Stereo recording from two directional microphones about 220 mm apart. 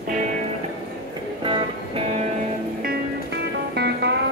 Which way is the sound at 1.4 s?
25° right (ahead or behind).